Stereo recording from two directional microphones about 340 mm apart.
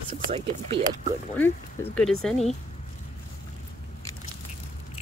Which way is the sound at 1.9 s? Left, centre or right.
Centre.